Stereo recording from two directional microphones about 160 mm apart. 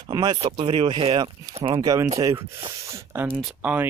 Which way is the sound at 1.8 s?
20° right (ahead or behind).